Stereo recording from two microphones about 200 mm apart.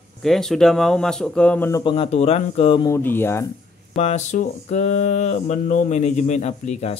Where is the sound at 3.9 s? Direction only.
35° left (ahead or behind).